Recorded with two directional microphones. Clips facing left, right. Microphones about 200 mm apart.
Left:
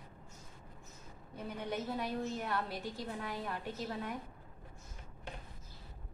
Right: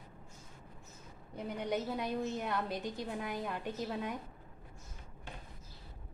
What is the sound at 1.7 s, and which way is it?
A woman's voice, 15° right (ahead or behind).